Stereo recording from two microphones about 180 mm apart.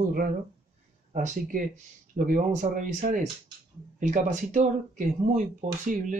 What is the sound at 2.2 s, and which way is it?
Speech, 50° right (ahead or behind).